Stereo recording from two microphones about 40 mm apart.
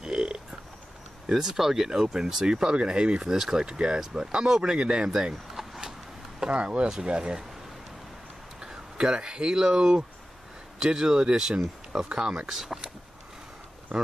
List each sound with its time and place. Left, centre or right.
0.0 s burping: centre
1.2 s speech: centre
3.3 s speech: centre
5.5 s vehicle: centre
6.4 s speech: right
8.5 s speech: centre